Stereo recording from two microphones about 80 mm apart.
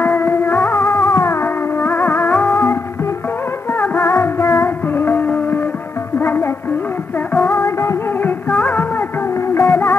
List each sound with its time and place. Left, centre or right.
0.0 s music: left
3.7 s music: left